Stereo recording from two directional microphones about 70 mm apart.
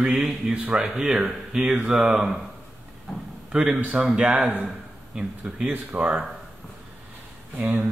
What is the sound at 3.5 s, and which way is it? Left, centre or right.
Speech, centre.